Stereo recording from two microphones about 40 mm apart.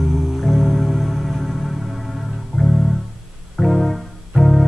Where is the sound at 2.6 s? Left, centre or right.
Centre.